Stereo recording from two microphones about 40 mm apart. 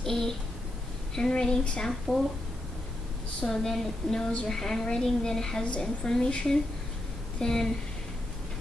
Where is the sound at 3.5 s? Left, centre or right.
Centre.